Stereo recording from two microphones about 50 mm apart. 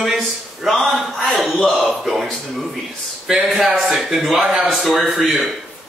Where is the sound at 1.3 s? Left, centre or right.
Centre.